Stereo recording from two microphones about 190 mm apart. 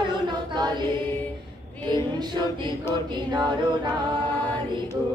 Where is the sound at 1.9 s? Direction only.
20° right (ahead or behind).